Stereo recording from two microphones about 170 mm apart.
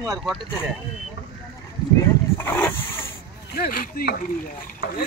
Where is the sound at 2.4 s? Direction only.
10° left (ahead or behind).